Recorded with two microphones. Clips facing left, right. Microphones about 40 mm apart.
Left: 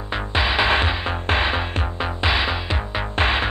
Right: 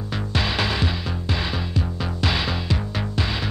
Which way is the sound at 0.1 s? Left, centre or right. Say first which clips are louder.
Left 4 dB; left.